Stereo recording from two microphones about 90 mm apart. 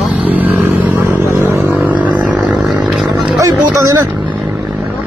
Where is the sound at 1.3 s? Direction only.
35° right (ahead or behind).